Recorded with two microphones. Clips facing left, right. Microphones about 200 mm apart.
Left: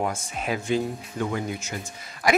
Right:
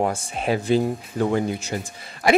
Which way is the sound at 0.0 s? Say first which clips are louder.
Right 5 dB; 30° right (ahead or behind).